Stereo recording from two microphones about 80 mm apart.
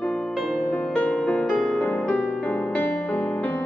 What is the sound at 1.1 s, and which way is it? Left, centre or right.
Music, centre.